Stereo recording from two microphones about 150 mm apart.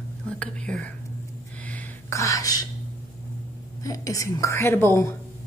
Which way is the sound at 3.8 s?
25° left (ahead or behind).